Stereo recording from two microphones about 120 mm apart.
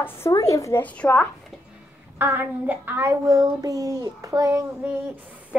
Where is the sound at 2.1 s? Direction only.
15° right (ahead or behind).